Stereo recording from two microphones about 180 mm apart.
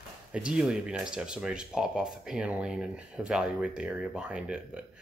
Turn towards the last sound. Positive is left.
turn(degrees=-5)  # may be behind; listen again after turning